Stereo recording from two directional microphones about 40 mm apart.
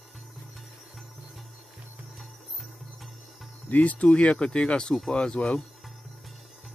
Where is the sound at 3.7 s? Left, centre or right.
Left.